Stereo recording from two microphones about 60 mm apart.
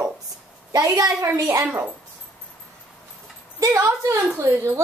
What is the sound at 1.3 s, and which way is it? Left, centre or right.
Speech, right.